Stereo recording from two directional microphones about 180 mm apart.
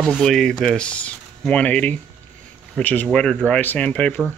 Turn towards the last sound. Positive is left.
turn(degrees=5)  # may be behind; listen again after turning